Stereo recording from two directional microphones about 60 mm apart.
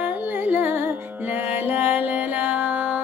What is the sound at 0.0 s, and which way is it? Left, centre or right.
Music, right.